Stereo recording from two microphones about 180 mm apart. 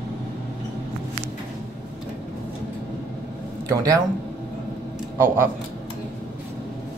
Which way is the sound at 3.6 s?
20° right (ahead or behind).